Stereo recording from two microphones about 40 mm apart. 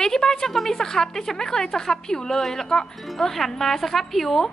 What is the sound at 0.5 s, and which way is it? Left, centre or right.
Speech, centre.